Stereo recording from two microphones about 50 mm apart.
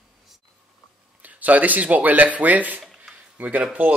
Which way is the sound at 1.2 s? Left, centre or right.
Right.